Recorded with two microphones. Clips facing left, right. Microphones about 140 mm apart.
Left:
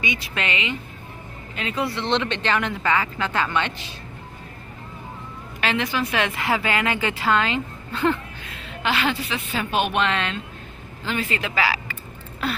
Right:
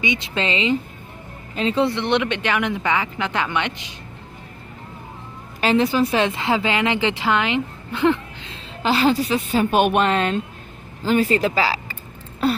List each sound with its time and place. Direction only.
0.0 s a woman's voice: 20° right (ahead or behind)
5.6 s a woman's voice: 35° right (ahead or behind); by 8.5 s 15° right (ahead or behind)
8.8 s a woman's voice: 35° right (ahead or behind)